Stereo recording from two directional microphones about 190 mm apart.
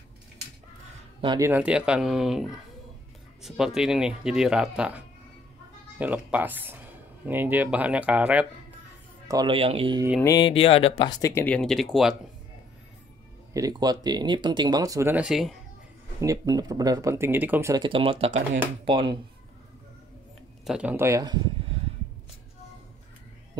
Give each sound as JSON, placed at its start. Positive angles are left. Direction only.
{"t": 1.2, "sound": "speech", "side_deg": -25}
{"t": 1.5, "sound": "speech", "side_deg": -5}
{"t": 9.3, "sound": "speech", "side_deg": -25}
{"t": 10.2, "sound": "speech", "side_deg": 25}
{"t": 13.5, "sound": "speech", "side_deg": -20}
{"t": 16.2, "sound": "speech", "side_deg": -20}
{"t": 17.8, "sound": "speech", "side_deg": -25}
{"t": 20.6, "sound": "speech", "side_deg": -5}